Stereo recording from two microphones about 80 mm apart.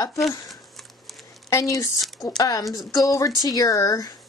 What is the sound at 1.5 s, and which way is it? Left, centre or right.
A woman's voice, left.